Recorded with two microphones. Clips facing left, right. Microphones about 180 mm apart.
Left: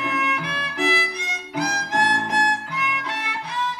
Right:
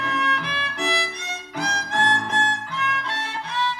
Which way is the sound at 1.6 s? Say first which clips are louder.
Even; 15° left (ahead or behind).